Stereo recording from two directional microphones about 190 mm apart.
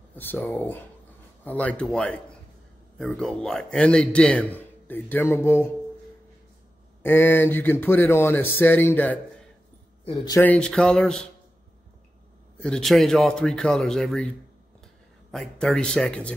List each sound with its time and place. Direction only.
0.1 s a man's voice: 10° left (ahead or behind)
7.0 s speech: 10° left (ahead or behind)
10.0 s speech: 20° left (ahead or behind)
10.4 s a man's voice: 5° left (ahead or behind)
12.5 s a man's voice: 5° left (ahead or behind)
15.3 s a man's voice: 5° left (ahead or behind)